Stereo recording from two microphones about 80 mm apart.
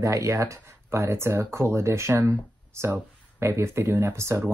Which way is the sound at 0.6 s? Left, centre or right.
Right.